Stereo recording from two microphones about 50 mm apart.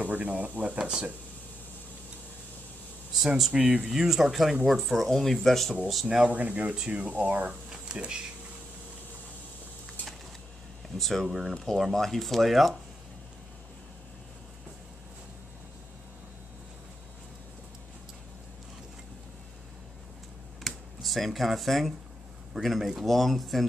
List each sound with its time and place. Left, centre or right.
0.0 s speech: right
0.7 s speech: centre
3.5 s speech: right
3.8 s speech: centre
6.0 s speech: centre
6.3 s speech: right
11.0 s speech: centre
20.6 s computer keyboard: centre
22.6 s speech: centre